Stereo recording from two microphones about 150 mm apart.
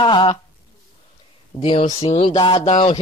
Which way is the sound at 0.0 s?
30° left (ahead or behind).